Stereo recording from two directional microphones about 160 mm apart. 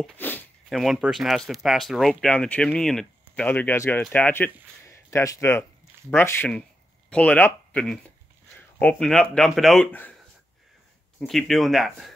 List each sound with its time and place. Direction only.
0.0 s a sound: 10° left (ahead or behind)
0.7 s speech: centre (ahead or behind)
11.1 s speech: centre (ahead or behind)